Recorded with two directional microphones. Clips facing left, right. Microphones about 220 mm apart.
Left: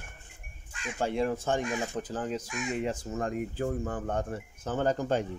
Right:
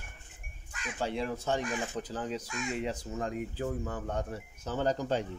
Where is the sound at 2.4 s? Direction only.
20° left (ahead or behind).